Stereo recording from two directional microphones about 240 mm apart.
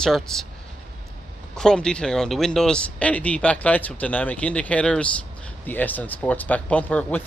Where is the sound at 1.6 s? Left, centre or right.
Centre.